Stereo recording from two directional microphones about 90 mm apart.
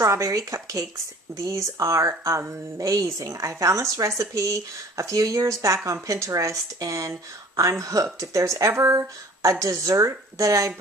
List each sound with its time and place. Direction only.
0.0 s speech: 35° right (ahead or behind)